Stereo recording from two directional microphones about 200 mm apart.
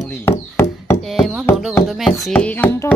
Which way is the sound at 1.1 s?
Centre (ahead or behind).